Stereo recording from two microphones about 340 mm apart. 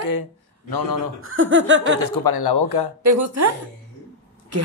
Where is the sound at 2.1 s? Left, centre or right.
Left.